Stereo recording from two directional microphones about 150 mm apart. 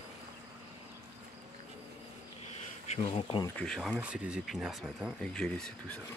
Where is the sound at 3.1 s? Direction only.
35° left (ahead or behind).